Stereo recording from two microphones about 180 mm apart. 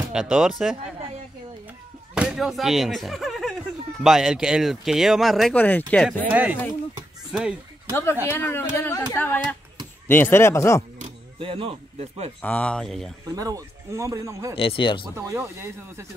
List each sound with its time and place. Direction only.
0.1 s speech: 5° right (ahead or behind)
2.1 s speech: centre (ahead or behind)
6.3 s speech: 10° right (ahead or behind)
7.9 s speech: 10° left (ahead or behind)
11.0 s a sound: 30° right (ahead or behind)
12.4 s speech: 5° left (ahead or behind)
13.3 s speech: 20° right (ahead or behind)
14.5 s speech: 30° left (ahead or behind)
15.1 s speech: 15° right (ahead or behind)